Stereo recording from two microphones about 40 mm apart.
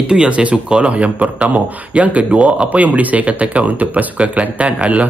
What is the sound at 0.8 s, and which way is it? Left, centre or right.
Speech, right.